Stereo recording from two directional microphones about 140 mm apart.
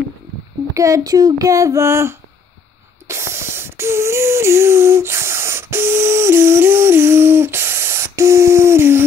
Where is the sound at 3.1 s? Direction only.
20° right (ahead or behind).